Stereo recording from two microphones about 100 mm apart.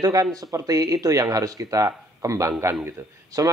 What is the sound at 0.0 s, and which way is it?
A man's voice, 35° right (ahead or behind).